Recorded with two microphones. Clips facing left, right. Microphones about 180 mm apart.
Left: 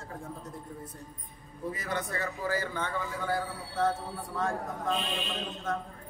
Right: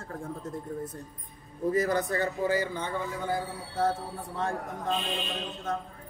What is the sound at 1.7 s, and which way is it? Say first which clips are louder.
Speech: right 9 dB; 35° right (ahead or behind).